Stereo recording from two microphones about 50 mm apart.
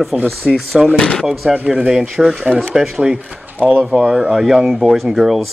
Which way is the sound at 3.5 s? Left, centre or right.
Right.